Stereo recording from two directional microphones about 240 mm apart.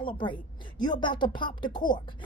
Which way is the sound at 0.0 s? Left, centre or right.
Centre.